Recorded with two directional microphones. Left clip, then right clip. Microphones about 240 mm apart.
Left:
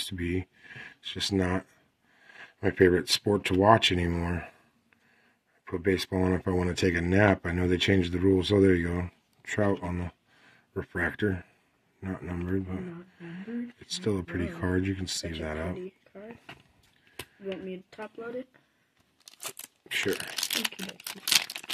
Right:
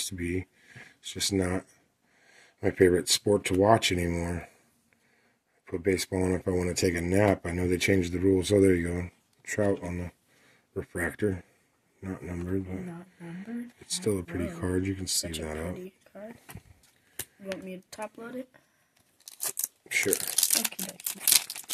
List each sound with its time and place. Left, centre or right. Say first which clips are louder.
0.0 s speech: left 1 dB; centre
5.7 s speech: even; centre
19.2 s tearing: right 4 dB; centre
19.9 s speech: right 1 dB; centre